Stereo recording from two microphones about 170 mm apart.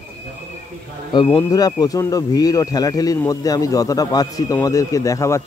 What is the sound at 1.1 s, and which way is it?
Speech, 25° left (ahead or behind).